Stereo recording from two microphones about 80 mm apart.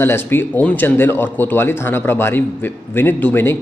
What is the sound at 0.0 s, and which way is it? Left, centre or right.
Speech, left.